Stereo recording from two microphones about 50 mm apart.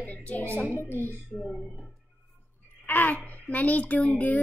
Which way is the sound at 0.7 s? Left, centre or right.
Left.